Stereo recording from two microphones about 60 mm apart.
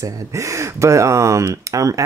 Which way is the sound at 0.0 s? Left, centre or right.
Right.